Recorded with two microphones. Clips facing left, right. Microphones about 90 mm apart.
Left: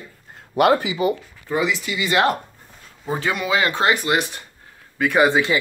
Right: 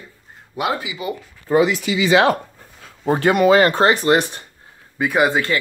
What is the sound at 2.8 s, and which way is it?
Speech, 60° right (ahead or behind).